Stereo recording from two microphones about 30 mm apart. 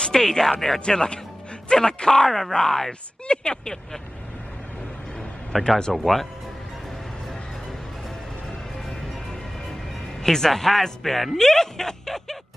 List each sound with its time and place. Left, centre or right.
0.0 s speech: centre
0.7 s speech: left
2.9 s speech: left
5.5 s speech: centre
10.2 s speech: centre